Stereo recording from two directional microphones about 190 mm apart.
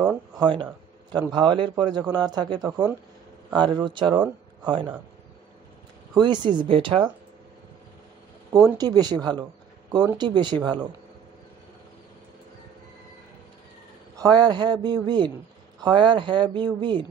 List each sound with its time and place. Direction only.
0.3 s speech: 25° right (ahead or behind)
6.1 s speech: 25° right (ahead or behind)
8.7 s speech: 20° right (ahead or behind)
14.1 s speech: 20° right (ahead or behind)